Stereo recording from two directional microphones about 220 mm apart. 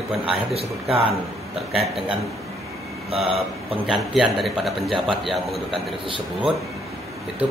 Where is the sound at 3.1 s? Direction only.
25° right (ahead or behind).